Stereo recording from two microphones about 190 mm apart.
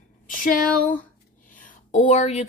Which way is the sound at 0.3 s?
45° left (ahead or behind).